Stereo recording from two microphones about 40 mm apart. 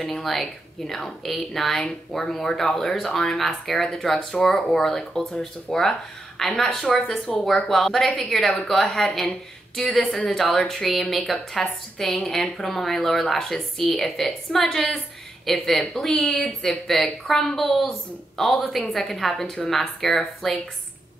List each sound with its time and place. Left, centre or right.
0.0 s a woman's voice: centre
4.1 s speech: left
4.5 s a woman's voice: centre